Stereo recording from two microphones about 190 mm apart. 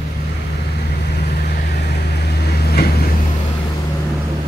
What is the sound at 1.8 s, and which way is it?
Vehicle, 60° left (ahead or behind).